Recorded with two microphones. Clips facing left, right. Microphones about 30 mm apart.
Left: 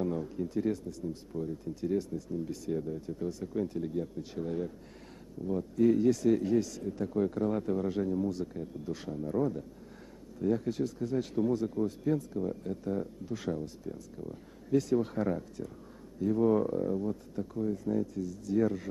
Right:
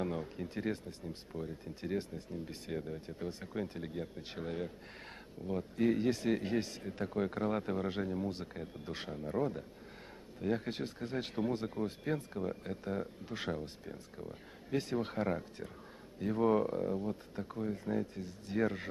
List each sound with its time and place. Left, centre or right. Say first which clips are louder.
0.0 s speech: left 5 dB; right